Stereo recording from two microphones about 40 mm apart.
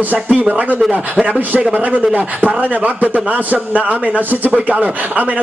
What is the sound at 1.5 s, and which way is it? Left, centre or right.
Speech, right.